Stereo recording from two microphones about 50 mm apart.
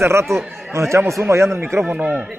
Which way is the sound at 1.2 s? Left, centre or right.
Right.